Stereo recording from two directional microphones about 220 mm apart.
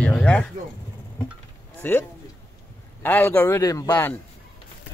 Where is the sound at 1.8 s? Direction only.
10° left (ahead or behind).